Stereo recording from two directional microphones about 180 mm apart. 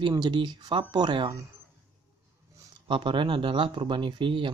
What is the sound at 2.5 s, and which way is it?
Speech, 25° right (ahead or behind).